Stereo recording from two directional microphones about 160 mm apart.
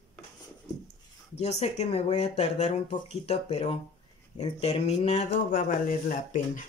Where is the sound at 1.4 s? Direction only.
45° left (ahead or behind).